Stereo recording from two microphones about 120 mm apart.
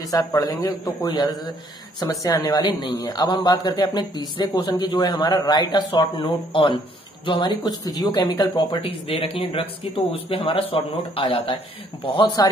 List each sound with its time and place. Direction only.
0.4 s a man's voice: 30° left (ahead or behind)
6.2 s a man's voice: 45° left (ahead or behind)
8.8 s speech: 55° left (ahead or behind)